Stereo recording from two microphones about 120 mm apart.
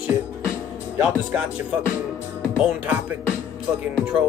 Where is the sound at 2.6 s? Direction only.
10° right (ahead or behind).